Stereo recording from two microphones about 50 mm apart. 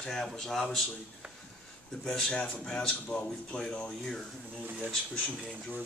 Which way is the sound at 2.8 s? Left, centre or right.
Left.